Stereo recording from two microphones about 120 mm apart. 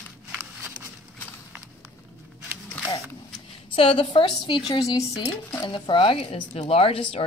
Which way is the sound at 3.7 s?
50° left (ahead or behind).